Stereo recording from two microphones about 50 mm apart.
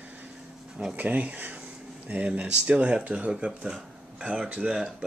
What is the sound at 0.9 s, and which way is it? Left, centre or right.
Speech, right.